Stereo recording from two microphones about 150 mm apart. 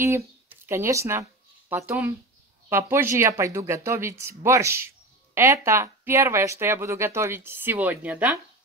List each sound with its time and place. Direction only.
0.0 s speech: 15° right (ahead or behind)